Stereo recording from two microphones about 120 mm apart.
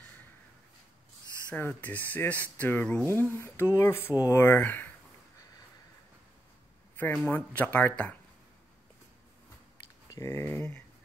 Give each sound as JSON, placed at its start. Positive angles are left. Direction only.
{"t": 1.5, "sound": "speech", "side_deg": 15}
{"t": 7.0, "sound": "speech", "side_deg": 15}
{"t": 10.0, "sound": "speech", "side_deg": 25}